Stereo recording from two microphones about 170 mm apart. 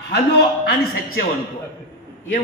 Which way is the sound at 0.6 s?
60° left (ahead or behind).